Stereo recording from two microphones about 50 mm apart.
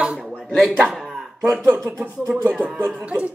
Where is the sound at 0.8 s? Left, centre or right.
Centre.